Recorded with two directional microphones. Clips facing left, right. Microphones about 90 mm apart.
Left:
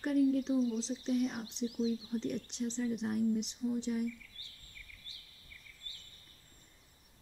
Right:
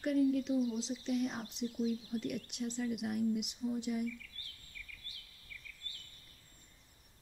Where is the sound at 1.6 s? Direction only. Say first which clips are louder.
Left 3 dB; 5° right (ahead or behind).